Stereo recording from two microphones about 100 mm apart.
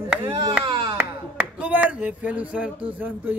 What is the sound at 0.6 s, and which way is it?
Music, 55° right (ahead or behind).